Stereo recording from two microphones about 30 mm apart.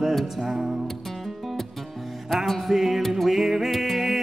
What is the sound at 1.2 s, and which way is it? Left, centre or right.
Music, centre.